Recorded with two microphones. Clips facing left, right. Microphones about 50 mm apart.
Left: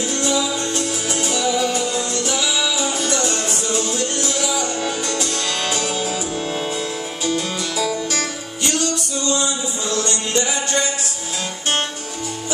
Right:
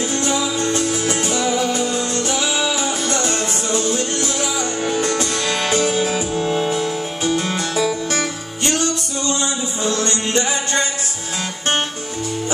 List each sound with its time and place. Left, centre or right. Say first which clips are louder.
0.0 s music: right 1 dB; right